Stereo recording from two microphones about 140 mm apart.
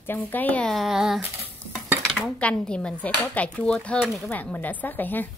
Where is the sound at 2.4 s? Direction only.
5° left (ahead or behind).